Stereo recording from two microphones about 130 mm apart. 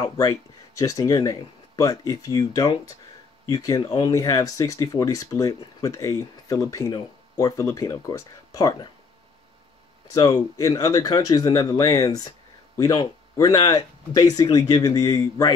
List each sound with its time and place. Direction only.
0.0 s speech: 30° left (ahead or behind)
10.1 s speech: 30° left (ahead or behind)